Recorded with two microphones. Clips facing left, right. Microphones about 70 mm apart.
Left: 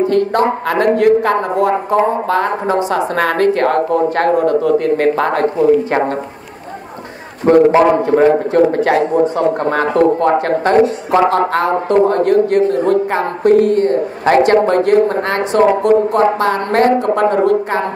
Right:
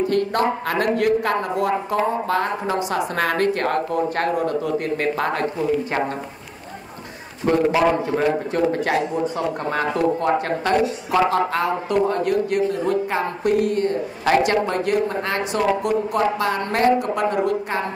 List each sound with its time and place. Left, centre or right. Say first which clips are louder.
0.1 s speech: left 6 dB; left
3.2 s speech: left 7 dB; left
7.5 s a man's voice: left 10 dB; left
7.9 s speech: left 9 dB; left
16.9 s speech: left 7 dB; left